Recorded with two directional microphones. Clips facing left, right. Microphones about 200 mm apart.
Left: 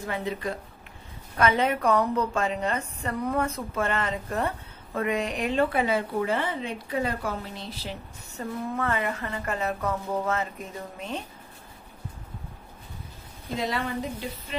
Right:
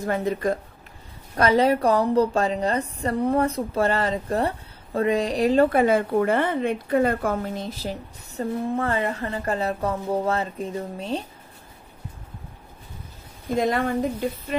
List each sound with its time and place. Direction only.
0.0 s a woman's voice: 45° right (ahead or behind)
1.3 s a woman's voice: 35° right (ahead or behind)
13.6 s a woman's voice: 50° right (ahead or behind)